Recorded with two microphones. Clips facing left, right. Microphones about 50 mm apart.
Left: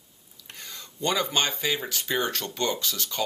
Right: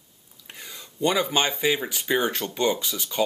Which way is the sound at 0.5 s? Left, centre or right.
Centre.